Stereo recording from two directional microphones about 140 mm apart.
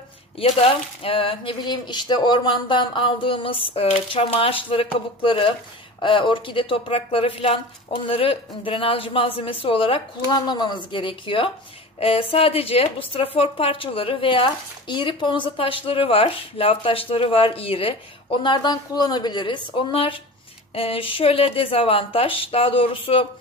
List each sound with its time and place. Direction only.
0.4 s a woman's voice: 40° left (ahead or behind)